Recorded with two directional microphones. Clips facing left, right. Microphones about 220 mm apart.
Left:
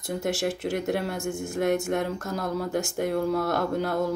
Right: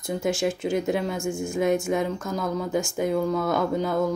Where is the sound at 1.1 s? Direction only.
20° left (ahead or behind).